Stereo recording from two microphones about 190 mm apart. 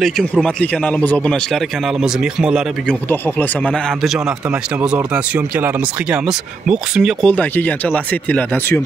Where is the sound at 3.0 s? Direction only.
10° left (ahead or behind).